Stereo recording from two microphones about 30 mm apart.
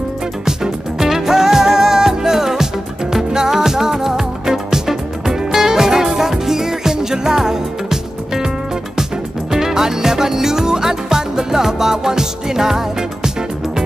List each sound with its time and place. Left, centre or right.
0.5 s music: centre
9.5 s music: centre